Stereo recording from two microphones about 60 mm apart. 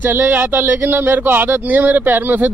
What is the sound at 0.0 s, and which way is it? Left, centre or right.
Speech, right.